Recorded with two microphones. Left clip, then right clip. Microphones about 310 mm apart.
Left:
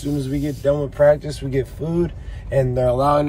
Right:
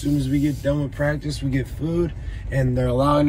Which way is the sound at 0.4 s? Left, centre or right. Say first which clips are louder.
Left 3 dB; centre.